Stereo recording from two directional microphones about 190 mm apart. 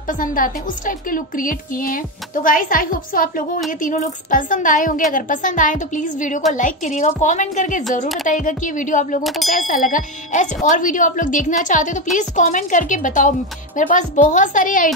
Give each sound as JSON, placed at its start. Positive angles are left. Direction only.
{"t": 0.0, "sound": "a woman's voice", "side_deg": 45}
{"t": 9.2, "sound": "a sound", "side_deg": 0}
{"t": 9.5, "sound": "a woman's voice", "side_deg": 45}